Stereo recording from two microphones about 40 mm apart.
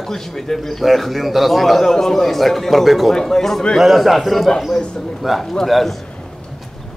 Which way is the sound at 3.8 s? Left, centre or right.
Centre.